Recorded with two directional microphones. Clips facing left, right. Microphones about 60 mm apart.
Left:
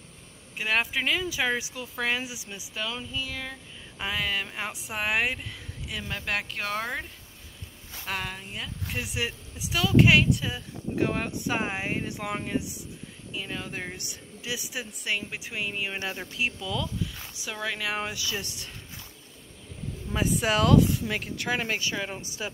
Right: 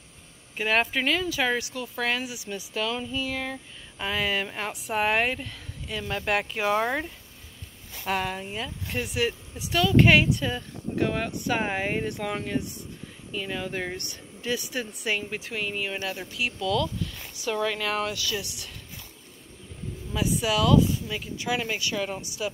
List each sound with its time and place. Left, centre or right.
0.6 s speech: centre
2.7 s female singing: centre
4.0 s speech: centre
9.0 s speech: centre
11.7 s speech: centre
15.3 s speech: centre
16.0 s speech: left; by 17.9 s centre
17.9 s speech: left
18.4 s speech: left
20.3 s speech: left
20.9 s speech: left
21.5 s speech: left
21.9 s speech: centre
22.2 s speech: left